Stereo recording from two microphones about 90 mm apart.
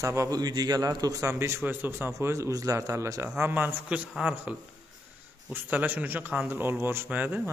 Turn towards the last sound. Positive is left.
turn(degrees=-15)  # may be behind; listen again after turning